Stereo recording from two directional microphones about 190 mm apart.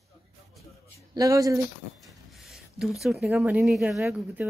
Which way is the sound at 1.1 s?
20° right (ahead or behind).